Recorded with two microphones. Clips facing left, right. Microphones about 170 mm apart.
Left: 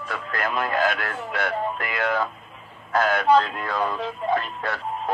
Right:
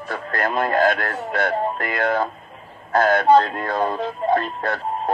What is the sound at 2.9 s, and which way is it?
Speech, 40° right (ahead or behind).